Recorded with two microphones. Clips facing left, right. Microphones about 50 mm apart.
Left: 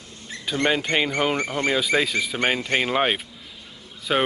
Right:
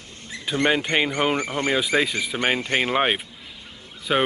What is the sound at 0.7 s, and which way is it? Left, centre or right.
Speech, centre.